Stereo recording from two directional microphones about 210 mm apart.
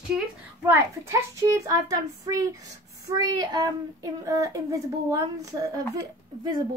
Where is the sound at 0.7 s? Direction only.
15° right (ahead or behind).